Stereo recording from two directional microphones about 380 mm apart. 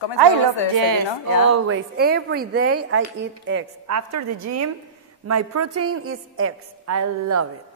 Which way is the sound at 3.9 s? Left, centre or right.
Right.